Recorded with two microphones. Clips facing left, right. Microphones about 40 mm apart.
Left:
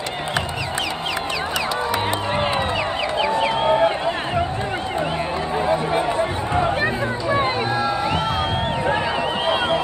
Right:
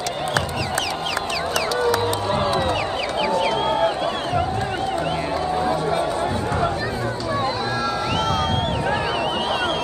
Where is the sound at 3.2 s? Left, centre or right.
Left.